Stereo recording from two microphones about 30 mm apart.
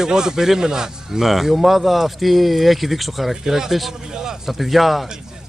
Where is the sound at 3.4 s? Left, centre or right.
Centre.